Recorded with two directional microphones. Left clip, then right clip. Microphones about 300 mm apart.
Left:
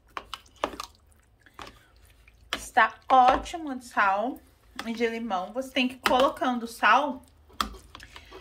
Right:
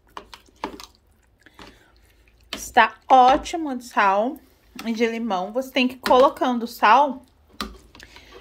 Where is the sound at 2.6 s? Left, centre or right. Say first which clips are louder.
Right 6 dB; right.